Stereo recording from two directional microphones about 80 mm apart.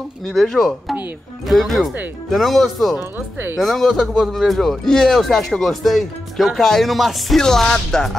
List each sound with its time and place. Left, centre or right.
0.3 s speech: centre
3.0 s speech: right
3.5 s speech: centre